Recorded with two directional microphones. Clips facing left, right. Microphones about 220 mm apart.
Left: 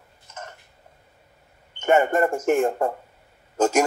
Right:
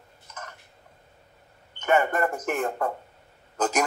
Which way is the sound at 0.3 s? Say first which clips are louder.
Left 3 dB; 25° left (ahead or behind).